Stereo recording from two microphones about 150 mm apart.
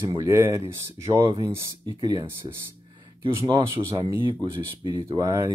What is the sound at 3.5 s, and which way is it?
Speech, 30° right (ahead or behind).